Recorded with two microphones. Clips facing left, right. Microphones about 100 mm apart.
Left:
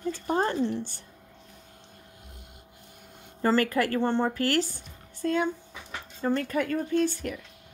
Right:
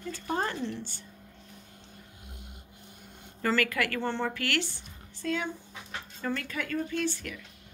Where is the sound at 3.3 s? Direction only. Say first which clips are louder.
Left 4 dB; 30° left (ahead or behind).